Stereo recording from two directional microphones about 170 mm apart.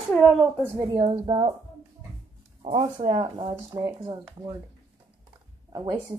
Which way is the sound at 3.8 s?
20° right (ahead or behind).